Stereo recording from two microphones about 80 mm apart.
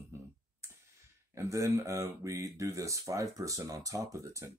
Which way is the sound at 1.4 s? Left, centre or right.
Right.